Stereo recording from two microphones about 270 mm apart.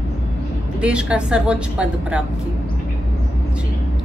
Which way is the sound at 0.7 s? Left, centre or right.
Centre.